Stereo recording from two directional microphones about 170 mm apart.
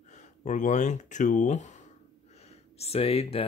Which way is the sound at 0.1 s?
45° left (ahead or behind).